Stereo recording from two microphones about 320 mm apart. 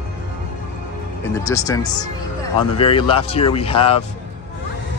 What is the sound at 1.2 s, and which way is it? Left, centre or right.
Speech, centre.